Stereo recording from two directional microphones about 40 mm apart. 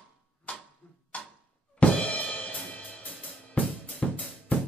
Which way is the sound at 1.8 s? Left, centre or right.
Left.